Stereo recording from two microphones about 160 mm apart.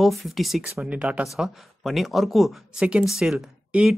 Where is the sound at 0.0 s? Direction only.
Centre (ahead or behind).